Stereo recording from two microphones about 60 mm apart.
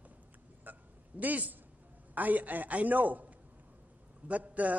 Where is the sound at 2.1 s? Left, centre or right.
Right.